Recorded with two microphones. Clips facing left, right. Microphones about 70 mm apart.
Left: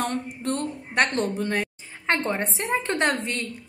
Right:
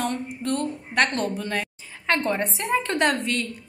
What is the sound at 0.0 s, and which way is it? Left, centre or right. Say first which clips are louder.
A woman's voice: even; left.